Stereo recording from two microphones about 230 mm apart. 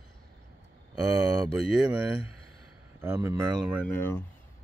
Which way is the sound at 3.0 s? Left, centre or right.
Centre.